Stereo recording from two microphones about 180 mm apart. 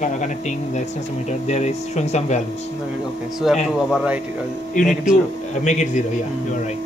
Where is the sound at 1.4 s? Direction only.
40° left (ahead or behind).